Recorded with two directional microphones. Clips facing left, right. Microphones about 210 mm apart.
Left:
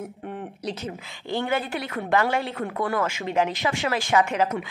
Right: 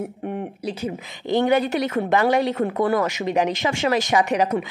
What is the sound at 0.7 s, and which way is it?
A woman's voice, 15° right (ahead or behind).